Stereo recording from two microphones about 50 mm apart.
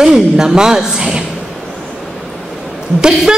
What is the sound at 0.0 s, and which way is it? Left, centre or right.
A woman's voice, centre.